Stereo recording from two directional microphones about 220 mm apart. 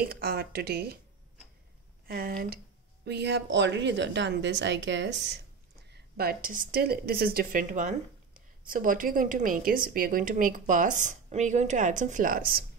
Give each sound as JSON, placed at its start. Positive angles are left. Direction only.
{"t": 0.0, "sound": "a woman's voice", "side_deg": -45}
{"t": 2.0, "sound": "a woman's voice", "side_deg": -45}